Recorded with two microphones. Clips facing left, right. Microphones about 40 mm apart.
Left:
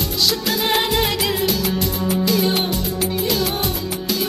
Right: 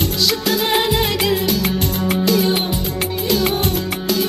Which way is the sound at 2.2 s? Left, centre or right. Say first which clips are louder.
Right 3 dB; centre.